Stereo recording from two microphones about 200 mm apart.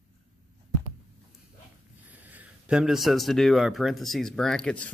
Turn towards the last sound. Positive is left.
turn(degrees=5)  # may be behind; listen again after turning